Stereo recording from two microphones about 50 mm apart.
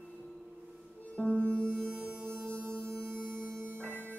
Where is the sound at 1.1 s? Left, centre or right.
Centre.